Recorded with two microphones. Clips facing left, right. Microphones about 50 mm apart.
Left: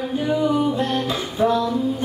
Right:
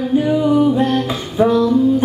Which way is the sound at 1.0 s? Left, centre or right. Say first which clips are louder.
Right 4 dB; centre.